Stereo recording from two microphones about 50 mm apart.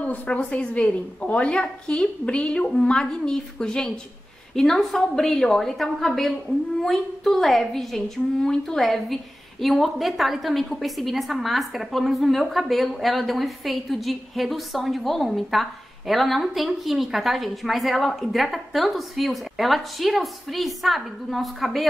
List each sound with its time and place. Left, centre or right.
0.0 s a woman's voice: left; by 21.8 s centre